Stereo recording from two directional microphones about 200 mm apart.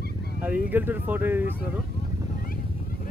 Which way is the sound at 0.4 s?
10° right (ahead or behind).